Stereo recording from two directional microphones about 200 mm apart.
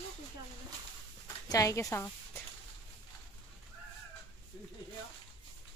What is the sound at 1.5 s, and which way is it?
Speech, 15° left (ahead or behind).